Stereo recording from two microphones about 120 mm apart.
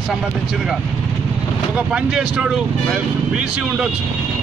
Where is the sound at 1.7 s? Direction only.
5° right (ahead or behind).